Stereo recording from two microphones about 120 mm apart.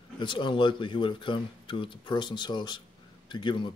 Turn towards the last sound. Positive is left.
turn(degrees=40)  # may be behind; listen again after turning